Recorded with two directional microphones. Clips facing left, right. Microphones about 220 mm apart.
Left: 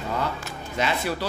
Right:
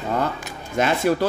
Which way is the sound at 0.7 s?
50° right (ahead or behind).